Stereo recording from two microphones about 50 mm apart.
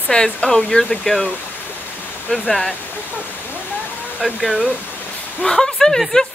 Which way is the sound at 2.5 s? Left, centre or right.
Centre.